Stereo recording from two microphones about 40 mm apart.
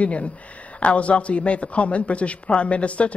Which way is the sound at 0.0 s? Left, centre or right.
Left.